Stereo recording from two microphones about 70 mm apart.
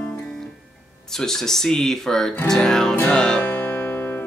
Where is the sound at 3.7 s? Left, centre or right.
Left.